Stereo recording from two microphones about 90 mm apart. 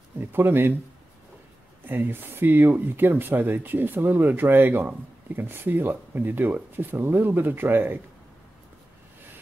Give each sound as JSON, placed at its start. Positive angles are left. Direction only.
{"t": 0.3, "sound": "speech", "side_deg": -25}
{"t": 1.9, "sound": "speech", "side_deg": -20}